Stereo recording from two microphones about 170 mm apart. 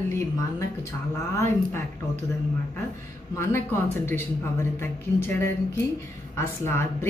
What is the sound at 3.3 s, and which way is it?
A woman's voice, 15° left (ahead or behind).